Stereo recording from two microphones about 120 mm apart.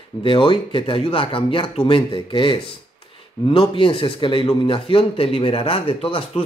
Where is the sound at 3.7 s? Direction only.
45° left (ahead or behind).